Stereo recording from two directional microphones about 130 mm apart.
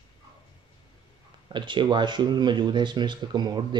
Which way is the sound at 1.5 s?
35° right (ahead or behind).